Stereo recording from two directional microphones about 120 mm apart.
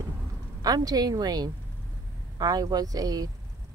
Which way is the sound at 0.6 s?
30° right (ahead or behind).